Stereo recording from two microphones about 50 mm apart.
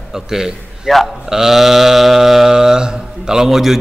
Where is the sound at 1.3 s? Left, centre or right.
Centre.